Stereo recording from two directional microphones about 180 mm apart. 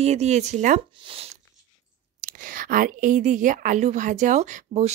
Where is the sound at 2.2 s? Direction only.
50° right (ahead or behind).